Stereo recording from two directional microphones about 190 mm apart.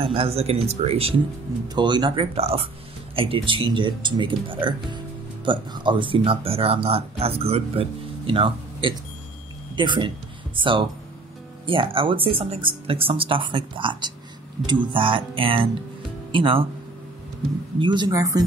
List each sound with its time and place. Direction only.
0.0 s speech: 30° right (ahead or behind)
17.7 s speech: 25° right (ahead or behind)